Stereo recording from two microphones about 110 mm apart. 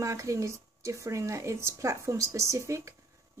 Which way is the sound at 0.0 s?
30° right (ahead or behind).